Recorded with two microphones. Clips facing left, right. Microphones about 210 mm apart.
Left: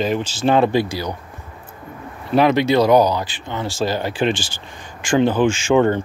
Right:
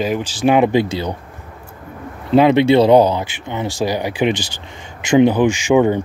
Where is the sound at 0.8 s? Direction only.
25° right (ahead or behind).